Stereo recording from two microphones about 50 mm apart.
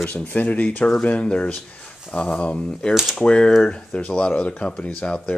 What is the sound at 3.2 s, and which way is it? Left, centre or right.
Speech, centre.